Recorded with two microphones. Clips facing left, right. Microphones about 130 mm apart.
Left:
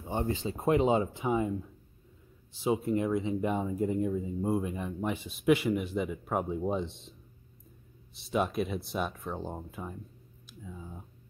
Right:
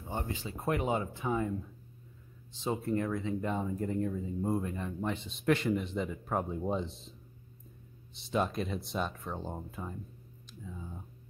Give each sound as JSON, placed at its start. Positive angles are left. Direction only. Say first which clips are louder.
{"t": 0.3, "sound": "speech", "louder": "left 7 dB", "side_deg": 25}
{"t": 2.5, "sound": "speech", "louder": "left 4 dB", "side_deg": 10}
{"t": 10.6, "sound": "a sound", "louder": "even", "side_deg": 5}